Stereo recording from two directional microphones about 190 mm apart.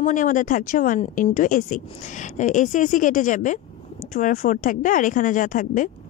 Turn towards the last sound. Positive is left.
turn(degrees=45)  # may be behind; listen again after turning